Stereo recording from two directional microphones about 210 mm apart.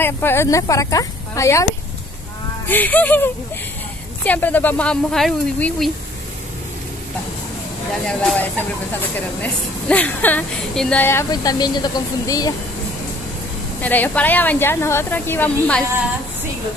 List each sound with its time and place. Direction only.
0.0 s speech: 10° left (ahead or behind)
4.2 s speech: 10° left (ahead or behind)
8.0 s speech: 5° left (ahead or behind)
13.7 s speech: 10° left (ahead or behind)